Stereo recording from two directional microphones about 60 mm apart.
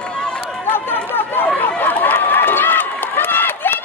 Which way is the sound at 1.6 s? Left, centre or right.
Left.